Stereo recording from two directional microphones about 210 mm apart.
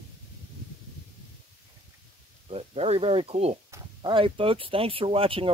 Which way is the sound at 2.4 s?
30° right (ahead or behind).